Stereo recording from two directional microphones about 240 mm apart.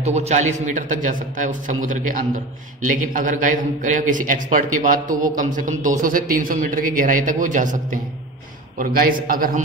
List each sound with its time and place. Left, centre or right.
0.0 s a man's voice: right